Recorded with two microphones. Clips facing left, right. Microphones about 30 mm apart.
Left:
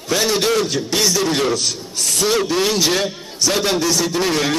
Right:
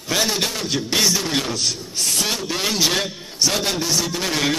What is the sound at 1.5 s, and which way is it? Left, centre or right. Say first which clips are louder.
Speech: left 2 dB; centre.